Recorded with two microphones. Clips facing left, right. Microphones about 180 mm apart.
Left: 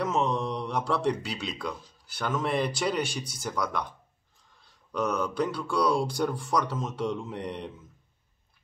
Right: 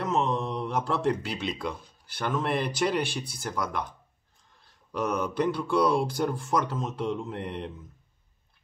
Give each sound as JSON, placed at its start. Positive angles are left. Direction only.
{"t": 0.0, "sound": "mantra", "side_deg": 0}
{"t": 2.2, "sound": "speech", "side_deg": 0}
{"t": 4.9, "sound": "speech", "side_deg": -5}